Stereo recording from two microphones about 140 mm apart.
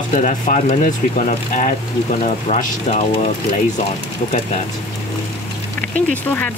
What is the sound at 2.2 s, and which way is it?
Speech, 55° left (ahead or behind).